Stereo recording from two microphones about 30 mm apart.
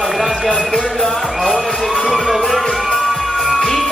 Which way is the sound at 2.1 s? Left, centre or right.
Centre.